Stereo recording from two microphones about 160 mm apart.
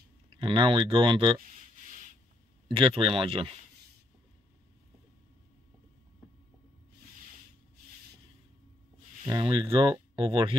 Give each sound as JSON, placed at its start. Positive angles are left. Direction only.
{"t": 0.4, "sound": "speech", "side_deg": -30}
{"t": 1.4, "sound": "a sound", "side_deg": -55}
{"t": 2.7, "sound": "speech", "side_deg": -35}
{"t": 9.2, "sound": "speech", "side_deg": -30}